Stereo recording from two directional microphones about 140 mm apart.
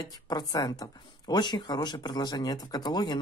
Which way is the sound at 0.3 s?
25° left (ahead or behind).